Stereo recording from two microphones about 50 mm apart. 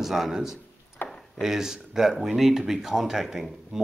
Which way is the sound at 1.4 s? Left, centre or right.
Centre.